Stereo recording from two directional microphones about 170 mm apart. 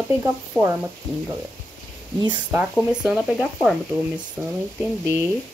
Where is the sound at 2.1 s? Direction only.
25° right (ahead or behind).